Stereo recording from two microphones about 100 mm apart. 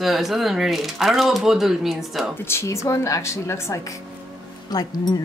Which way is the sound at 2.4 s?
25° left (ahead or behind).